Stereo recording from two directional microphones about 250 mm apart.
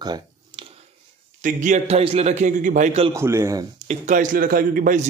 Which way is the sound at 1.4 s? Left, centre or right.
Right.